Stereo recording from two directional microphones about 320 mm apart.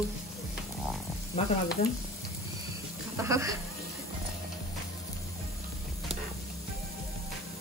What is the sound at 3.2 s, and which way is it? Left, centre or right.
Speech, centre.